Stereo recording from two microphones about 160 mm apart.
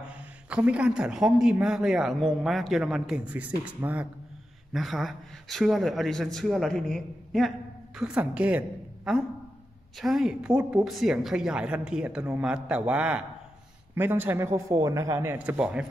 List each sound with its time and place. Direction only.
0.5 s a man's voice: 5° right (ahead or behind)
15.3 s a man's voice: 10° right (ahead or behind)